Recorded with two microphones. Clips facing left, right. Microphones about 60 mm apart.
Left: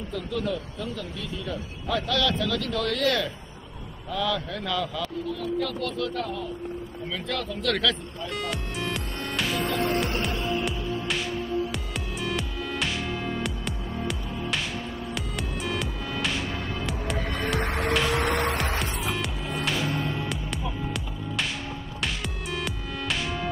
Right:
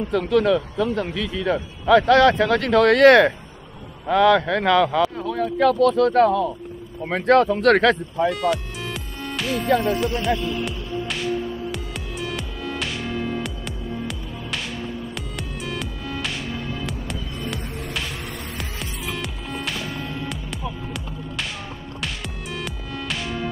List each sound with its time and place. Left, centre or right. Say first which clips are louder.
0.1 s a man's voice: right 11 dB; right
8.3 s music: right 9 dB; centre
9.7 s speech: right 11 dB; right
10.5 s music: right 1 dB; centre
17.6 s music: left 6 dB; left
19.0 s music: even; centre